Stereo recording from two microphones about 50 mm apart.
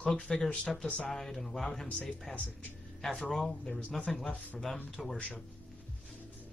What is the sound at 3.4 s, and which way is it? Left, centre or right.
Speech, centre.